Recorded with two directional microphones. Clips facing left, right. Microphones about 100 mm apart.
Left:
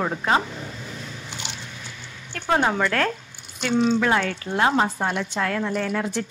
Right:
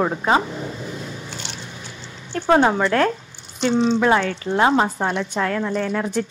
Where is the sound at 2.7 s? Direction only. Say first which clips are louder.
Right 4 dB; 30° right (ahead or behind).